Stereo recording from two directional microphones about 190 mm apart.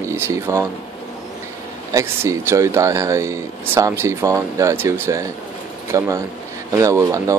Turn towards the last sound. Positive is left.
turn(degrees=-15)  # may be behind; listen again after turning